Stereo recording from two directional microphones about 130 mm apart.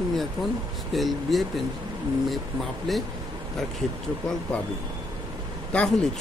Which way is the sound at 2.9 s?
Centre (ahead or behind).